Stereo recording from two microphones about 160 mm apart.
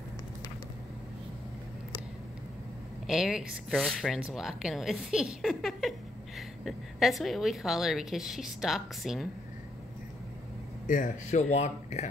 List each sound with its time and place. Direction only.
3.1 s speech: 5° right (ahead or behind)
10.9 s speech: 50° left (ahead or behind)